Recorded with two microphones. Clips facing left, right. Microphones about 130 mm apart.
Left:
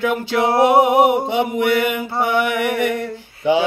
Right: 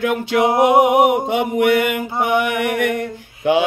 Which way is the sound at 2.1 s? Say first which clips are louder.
Right 1 dB; 15° right (ahead or behind).